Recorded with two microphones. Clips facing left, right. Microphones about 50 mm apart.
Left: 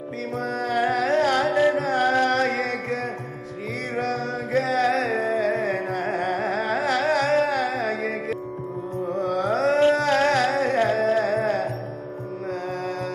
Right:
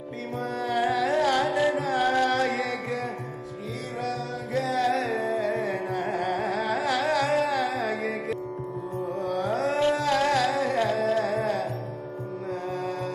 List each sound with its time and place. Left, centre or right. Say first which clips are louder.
0.6 s carnatic music: left 2 dB; left
1.7 s music: left 3 dB; left
4.0 s music: left 4 dB; left
9.1 s carnatic music: left 5 dB; left
9.9 s music: left 3 dB; left